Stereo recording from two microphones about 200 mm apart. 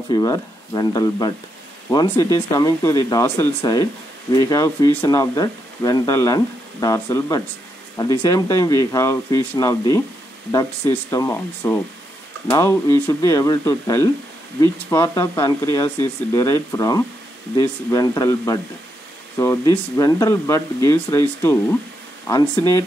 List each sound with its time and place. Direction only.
0.1 s speech: 20° left (ahead or behind)
22.3 s speech: 15° left (ahead or behind)